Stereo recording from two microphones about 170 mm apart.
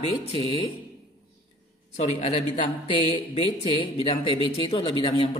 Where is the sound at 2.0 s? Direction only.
35° left (ahead or behind).